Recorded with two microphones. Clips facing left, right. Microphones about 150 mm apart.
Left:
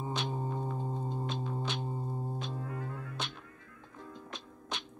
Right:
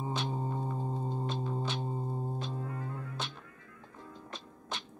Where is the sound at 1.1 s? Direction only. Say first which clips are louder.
Right 1 dB; centre (ahead or behind).